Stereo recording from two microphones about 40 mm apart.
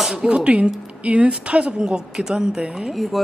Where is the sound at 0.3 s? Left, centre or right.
Right.